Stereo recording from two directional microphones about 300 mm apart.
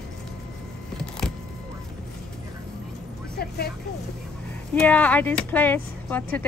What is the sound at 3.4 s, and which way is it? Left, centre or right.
Vehicle, left.